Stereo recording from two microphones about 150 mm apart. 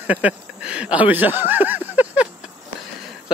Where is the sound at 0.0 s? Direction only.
10° right (ahead or behind).